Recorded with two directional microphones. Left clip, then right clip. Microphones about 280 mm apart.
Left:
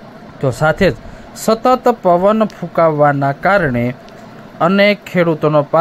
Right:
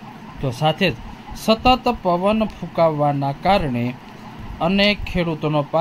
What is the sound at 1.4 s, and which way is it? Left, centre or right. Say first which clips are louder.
Speech: left 4 dB; left.